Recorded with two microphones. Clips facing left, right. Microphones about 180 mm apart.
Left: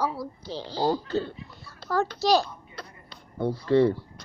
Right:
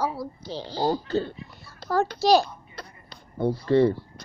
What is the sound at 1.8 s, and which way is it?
Speech, 5° right (ahead or behind).